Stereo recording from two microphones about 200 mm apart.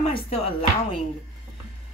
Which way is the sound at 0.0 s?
30° left (ahead or behind).